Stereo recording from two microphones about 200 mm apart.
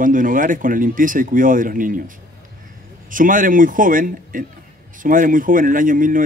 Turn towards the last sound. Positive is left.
turn(degrees=-45)  # may be behind; listen again after turning